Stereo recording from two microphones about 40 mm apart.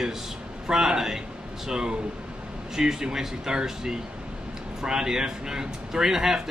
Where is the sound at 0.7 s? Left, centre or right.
Centre.